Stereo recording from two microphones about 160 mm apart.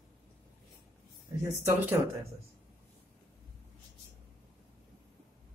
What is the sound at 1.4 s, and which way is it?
Speech, 20° right (ahead or behind).